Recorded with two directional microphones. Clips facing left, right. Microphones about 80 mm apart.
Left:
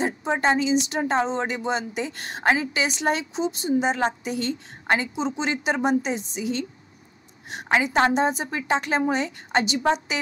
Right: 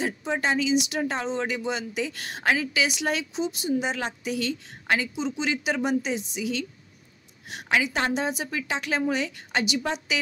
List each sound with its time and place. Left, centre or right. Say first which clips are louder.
0.0 s speech: left 4 dB; left